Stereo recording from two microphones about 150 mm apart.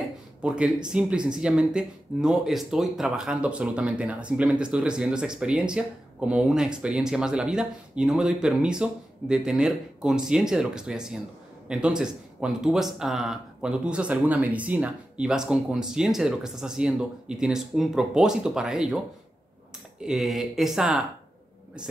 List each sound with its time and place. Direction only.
0.4 s speech: 5° right (ahead or behind)
20.0 s speech: centre (ahead or behind)